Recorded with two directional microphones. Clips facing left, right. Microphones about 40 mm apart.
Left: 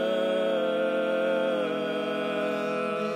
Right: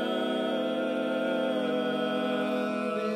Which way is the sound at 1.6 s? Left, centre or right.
Left.